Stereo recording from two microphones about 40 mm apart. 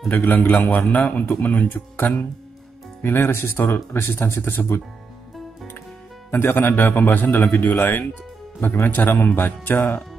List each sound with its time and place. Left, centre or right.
0.1 s speech: left
3.0 s speech: left
6.3 s a man's voice: left